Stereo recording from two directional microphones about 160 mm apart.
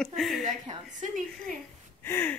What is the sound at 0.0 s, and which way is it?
Speech, centre (ahead or behind).